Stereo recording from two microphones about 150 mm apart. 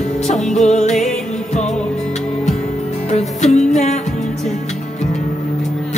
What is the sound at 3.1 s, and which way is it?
Music, 50° left (ahead or behind).